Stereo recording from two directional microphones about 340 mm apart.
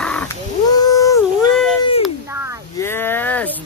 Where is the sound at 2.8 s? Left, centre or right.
Centre.